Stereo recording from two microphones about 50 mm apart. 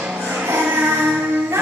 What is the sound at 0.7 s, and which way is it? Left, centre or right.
Music, right.